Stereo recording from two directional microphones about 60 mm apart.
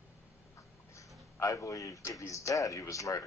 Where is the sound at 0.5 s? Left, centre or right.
Left.